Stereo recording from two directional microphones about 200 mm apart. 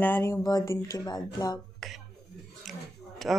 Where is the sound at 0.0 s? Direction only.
10° left (ahead or behind).